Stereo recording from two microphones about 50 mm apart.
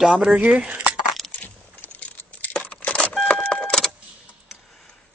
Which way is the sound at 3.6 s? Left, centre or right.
Centre.